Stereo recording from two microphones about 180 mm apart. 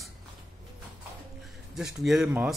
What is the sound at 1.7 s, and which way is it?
Speech, centre (ahead or behind).